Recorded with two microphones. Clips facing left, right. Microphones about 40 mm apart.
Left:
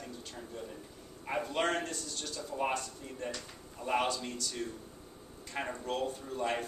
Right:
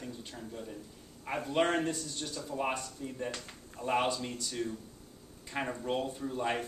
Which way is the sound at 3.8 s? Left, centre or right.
Centre.